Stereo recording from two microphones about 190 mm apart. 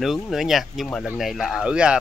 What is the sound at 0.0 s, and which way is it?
Speech, centre (ahead or behind).